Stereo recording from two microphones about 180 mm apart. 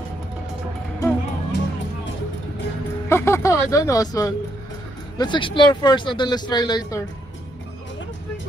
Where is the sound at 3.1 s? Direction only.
15° left (ahead or behind).